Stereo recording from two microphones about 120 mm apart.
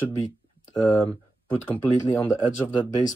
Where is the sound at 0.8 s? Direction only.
35° left (ahead or behind).